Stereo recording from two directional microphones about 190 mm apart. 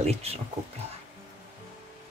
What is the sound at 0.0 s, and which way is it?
Speech, 35° right (ahead or behind).